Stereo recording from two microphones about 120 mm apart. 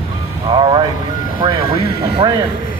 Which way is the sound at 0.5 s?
45° right (ahead or behind).